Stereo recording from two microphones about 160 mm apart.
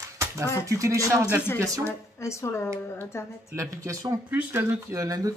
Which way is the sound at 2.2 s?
20° left (ahead or behind).